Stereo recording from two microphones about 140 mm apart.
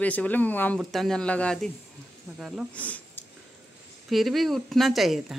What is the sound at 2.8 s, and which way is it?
Speech, 10° left (ahead or behind).